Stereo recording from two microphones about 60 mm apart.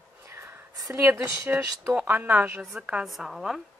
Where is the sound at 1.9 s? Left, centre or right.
Right.